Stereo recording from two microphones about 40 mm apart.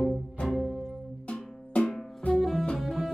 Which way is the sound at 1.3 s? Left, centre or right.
Left.